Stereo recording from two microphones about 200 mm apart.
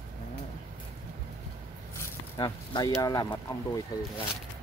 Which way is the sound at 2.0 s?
20° left (ahead or behind).